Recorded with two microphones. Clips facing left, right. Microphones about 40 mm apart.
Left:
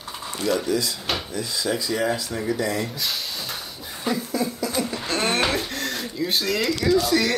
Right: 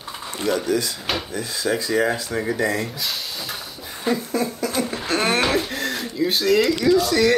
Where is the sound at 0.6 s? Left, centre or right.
Right.